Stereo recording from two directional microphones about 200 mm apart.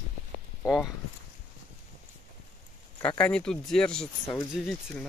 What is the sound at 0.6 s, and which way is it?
Speech, centre (ahead or behind).